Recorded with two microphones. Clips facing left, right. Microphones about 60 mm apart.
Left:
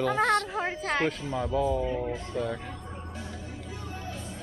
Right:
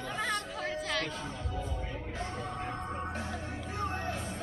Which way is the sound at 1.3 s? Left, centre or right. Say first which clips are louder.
Left 12 dB; left.